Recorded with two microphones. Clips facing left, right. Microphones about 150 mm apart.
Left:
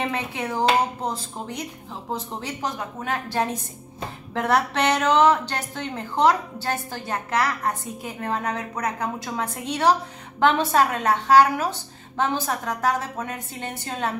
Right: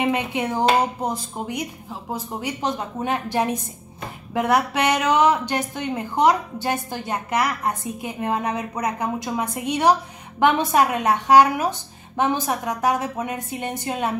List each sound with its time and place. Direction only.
0.0 s a woman's voice: 15° right (ahead or behind)